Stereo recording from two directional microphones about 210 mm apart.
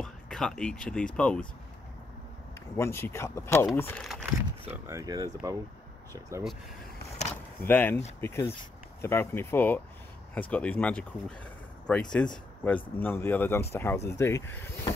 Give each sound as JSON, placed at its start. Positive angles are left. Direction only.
{"t": 0.0, "sound": "speech", "side_deg": 0}
{"t": 2.8, "sound": "speech", "side_deg": 10}
{"t": 4.8, "sound": "speech", "side_deg": -15}
{"t": 7.6, "sound": "speech", "side_deg": 10}